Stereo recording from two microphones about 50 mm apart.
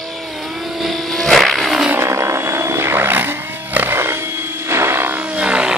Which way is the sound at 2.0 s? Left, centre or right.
Right.